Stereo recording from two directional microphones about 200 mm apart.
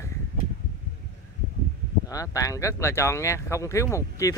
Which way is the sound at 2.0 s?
15° left (ahead or behind).